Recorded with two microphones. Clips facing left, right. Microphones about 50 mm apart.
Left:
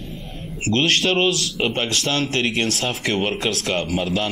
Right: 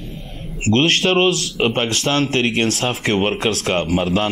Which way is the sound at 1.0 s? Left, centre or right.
Right.